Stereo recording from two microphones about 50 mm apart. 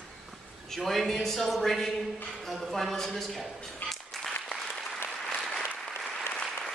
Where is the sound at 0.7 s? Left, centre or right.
Centre.